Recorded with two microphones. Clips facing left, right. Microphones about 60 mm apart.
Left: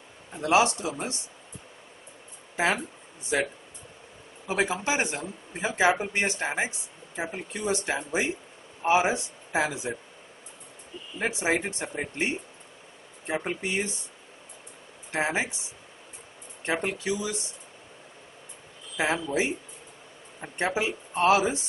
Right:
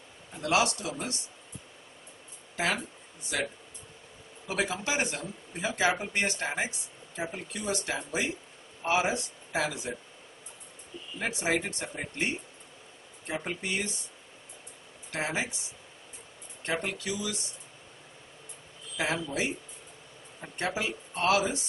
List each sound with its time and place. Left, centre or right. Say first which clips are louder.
0.3 s speech: left 5 dB; left
2.5 s speech: left 4 dB; left
4.5 s speech: left 4 dB; left
11.1 s speech: left 3 dB; centre
13.3 s speech: left 4 dB; left
15.0 s speech: left 5 dB; left
16.6 s speech: left 4 dB; left
18.9 s speech: left 4 dB; left